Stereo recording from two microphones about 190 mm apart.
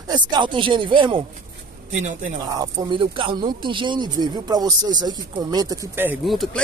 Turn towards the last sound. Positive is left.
turn(degrees=0)  # may be behind; listen again after turning